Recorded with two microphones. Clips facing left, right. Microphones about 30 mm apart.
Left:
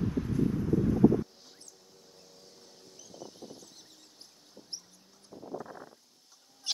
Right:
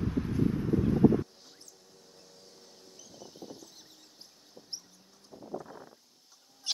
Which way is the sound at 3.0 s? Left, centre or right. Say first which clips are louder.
Left 1 dB; centre.